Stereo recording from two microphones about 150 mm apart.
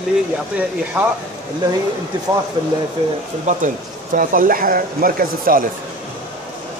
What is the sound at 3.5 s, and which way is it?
Speech, 55° right (ahead or behind).